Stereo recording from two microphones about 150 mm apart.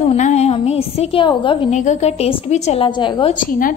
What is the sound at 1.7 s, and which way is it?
A woman's voice, 50° left (ahead or behind).